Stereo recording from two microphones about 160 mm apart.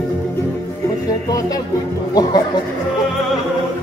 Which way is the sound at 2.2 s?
25° left (ahead or behind).